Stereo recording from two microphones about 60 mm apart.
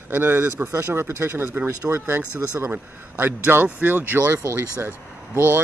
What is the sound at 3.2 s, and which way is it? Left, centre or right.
Speech, right.